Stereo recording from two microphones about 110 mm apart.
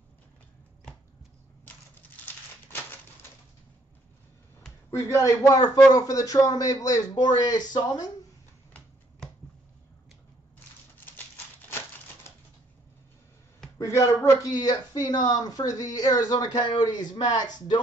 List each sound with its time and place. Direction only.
4.9 s speech: 25° left (ahead or behind)
13.7 s speech: 25° left (ahead or behind)